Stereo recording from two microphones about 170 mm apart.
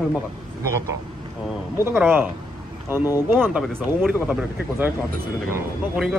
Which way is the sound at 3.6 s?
Centre (ahead or behind).